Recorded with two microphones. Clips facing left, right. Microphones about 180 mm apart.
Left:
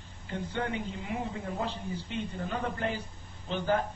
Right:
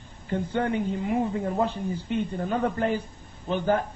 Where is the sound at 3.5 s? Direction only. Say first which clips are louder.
Right 5 dB; 50° right (ahead or behind).